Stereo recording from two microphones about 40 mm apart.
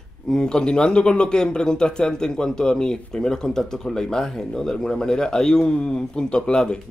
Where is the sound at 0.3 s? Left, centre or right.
Centre.